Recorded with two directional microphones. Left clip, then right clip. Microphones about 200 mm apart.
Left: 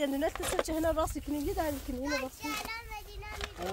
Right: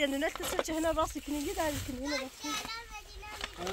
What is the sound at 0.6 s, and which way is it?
Speech, 45° left (ahead or behind).